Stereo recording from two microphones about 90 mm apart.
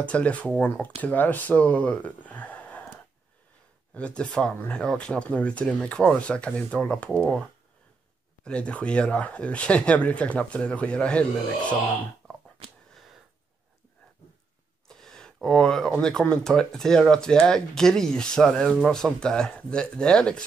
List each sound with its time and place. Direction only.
0.0 s speech: 15° left (ahead or behind)
8.5 s speech: 10° left (ahead or behind)
12.2 s a sound: 10° left (ahead or behind)
12.9 s sniff: centre (ahead or behind)
14.9 s a sound: 5° left (ahead or behind)
16.0 s speech: 10° left (ahead or behind)